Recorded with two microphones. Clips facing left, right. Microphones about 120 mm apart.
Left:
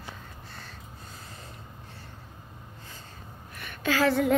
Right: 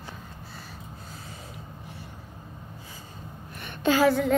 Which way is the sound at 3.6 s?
25° right (ahead or behind).